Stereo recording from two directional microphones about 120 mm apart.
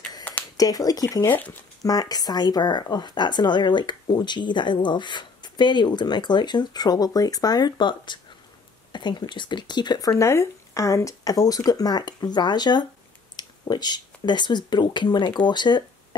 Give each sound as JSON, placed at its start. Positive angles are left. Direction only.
{"t": 0.2, "sound": "a sound", "side_deg": 15}
{"t": 0.6, "sound": "speech", "side_deg": 30}
{"t": 1.3, "sound": "speech", "side_deg": 15}
{"t": 1.8, "sound": "speech", "side_deg": 30}